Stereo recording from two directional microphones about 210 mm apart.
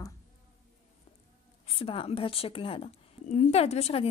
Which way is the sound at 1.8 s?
30° left (ahead or behind).